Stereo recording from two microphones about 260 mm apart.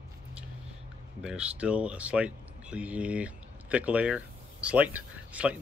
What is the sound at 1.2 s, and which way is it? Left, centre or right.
Speech, centre.